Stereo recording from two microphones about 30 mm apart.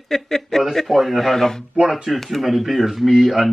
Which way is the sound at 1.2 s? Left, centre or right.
Centre.